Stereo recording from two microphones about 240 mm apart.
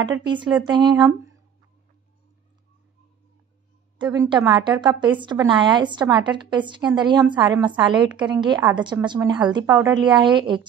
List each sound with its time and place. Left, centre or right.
0.0 s a woman's voice: centre
4.0 s a woman's voice: centre
7.3 s a woman's voice: centre
8.4 s a woman's voice: centre
10.0 s a woman's voice: centre